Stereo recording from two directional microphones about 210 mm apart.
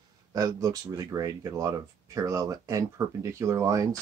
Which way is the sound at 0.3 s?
15° right (ahead or behind).